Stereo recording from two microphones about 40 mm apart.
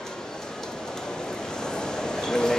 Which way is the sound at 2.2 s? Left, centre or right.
Centre.